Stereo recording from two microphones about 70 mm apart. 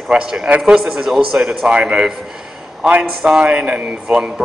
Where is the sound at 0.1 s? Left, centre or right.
Centre.